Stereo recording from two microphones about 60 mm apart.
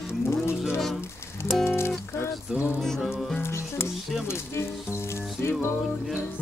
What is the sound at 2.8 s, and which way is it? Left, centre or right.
Music, centre.